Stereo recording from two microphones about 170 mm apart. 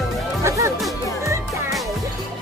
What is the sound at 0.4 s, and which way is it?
Music, 15° right (ahead or behind).